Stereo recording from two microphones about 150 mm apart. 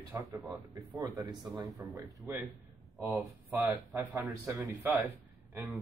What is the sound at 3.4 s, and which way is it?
Speech, 15° right (ahead or behind).